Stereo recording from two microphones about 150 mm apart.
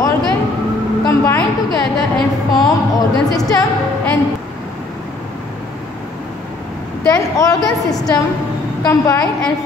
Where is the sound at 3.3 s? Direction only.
25° left (ahead or behind).